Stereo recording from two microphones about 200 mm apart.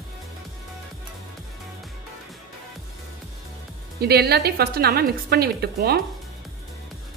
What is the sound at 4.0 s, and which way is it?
A woman's voice, 55° right (ahead or behind).